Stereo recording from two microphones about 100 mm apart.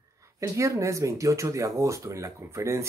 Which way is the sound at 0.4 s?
30° right (ahead or behind).